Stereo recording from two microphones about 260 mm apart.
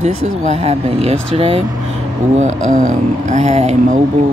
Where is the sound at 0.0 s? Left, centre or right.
Right.